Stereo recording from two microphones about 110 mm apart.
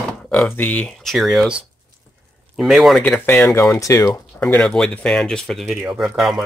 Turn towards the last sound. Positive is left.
turn(degrees=-5)  # may be behind; listen again after turning